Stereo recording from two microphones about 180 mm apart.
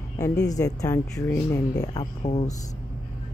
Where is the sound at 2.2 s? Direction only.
40° left (ahead or behind).